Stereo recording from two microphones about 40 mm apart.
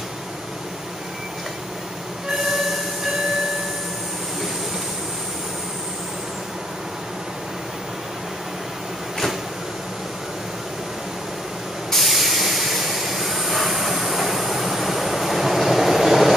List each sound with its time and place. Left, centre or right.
2.2 s train: centre
11.9 s train: centre